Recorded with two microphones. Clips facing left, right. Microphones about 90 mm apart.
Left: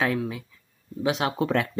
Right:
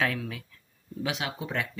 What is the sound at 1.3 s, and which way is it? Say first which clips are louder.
Speech: left 8 dB; 60° left (ahead or behind).